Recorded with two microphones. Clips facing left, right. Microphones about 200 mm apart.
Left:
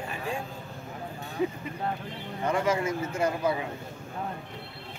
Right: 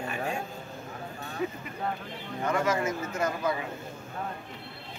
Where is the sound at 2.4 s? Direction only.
30° left (ahead or behind).